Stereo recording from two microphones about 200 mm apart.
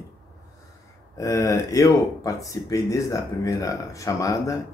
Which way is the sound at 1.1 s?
15° left (ahead or behind).